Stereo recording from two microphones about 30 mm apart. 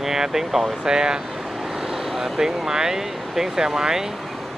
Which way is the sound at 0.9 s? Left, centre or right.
Right.